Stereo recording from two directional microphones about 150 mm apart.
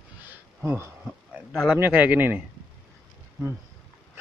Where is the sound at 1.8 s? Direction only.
10° right (ahead or behind).